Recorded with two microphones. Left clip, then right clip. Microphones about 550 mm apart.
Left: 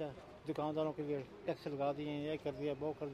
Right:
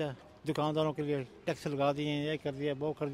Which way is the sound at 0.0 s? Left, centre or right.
Right.